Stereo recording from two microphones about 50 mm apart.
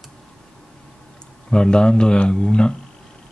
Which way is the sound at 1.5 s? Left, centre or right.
Centre.